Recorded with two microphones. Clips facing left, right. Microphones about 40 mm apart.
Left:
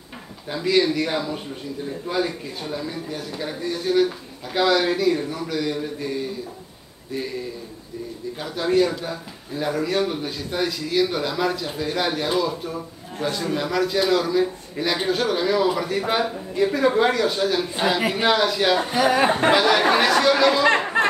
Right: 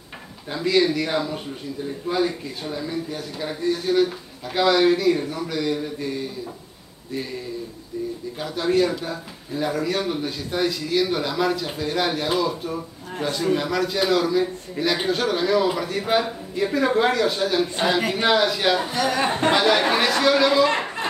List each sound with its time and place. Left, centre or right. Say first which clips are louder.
0.5 s a man's voice: even; centre
8.4 s a man's voice: left 1 dB; centre
18.9 s speech: left 4 dB; centre
19.5 s a man's voice: right 1 dB; centre
20.6 s a sound: left 4 dB; left